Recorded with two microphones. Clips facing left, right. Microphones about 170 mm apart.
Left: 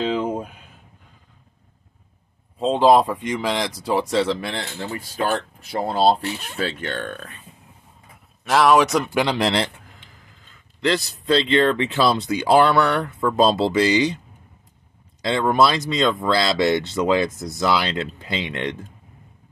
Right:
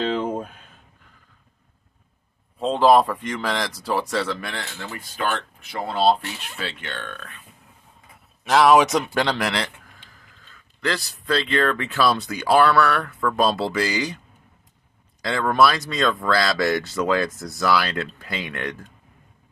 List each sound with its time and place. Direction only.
0.0 s a sound: 5° left (ahead or behind)
2.6 s speech: 15° left (ahead or behind); by 7.3 s 35° left (ahead or behind)
8.5 s speech: centre (ahead or behind)
9.1 s speech: 10° left (ahead or behind)
9.4 s speech: 25° left (ahead or behind)
15.2 s speech: 20° left (ahead or behind)